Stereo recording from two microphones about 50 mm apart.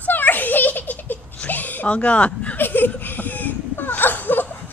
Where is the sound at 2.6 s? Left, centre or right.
Left.